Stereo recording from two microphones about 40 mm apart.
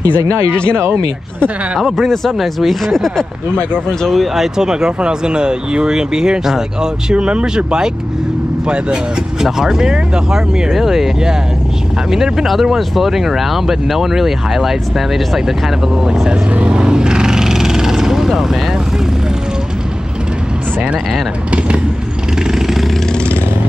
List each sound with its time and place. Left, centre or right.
0.0 s speech: right
2.0 s speech: centre
4.6 s speech: centre
9.4 s speech: centre
12.1 s speech: centre
16.5 s vehicle: right; by 18.8 s centre
21.5 s speech: right
22.5 s vehicle: centre